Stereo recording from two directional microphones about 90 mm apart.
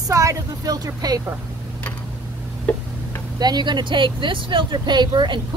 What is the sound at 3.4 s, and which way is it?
Speech, 50° right (ahead or behind).